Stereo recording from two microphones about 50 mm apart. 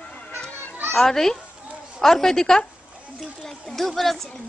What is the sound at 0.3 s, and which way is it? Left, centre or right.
Children playing, right.